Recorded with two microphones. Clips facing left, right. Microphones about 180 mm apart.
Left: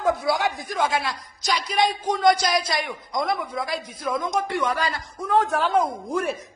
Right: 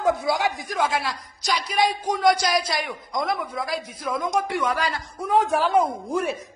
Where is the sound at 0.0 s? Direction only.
15° right (ahead or behind).